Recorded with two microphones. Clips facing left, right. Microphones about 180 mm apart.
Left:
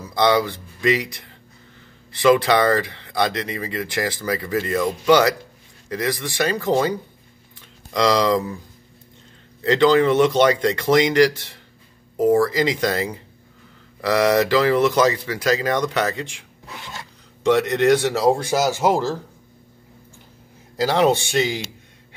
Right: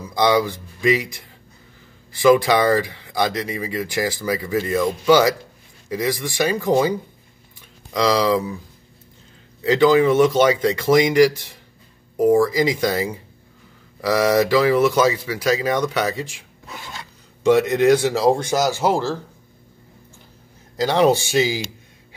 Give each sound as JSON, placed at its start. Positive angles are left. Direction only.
{"t": 0.1, "sound": "speech", "side_deg": -15}
{"t": 2.3, "sound": "speech", "side_deg": -10}
{"t": 9.6, "sound": "speech", "side_deg": -10}
{"t": 20.7, "sound": "speech", "side_deg": 0}